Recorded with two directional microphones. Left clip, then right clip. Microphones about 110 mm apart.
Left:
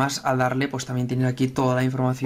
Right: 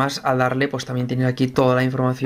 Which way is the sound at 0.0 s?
15° right (ahead or behind).